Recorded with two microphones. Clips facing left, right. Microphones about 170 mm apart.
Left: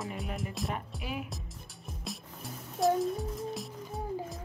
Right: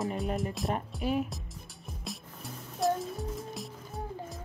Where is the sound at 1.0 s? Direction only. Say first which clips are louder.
Right 8 dB; 40° right (ahead or behind).